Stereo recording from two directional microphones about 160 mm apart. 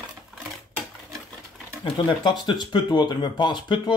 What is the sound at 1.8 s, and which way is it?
Speech, 30° left (ahead or behind).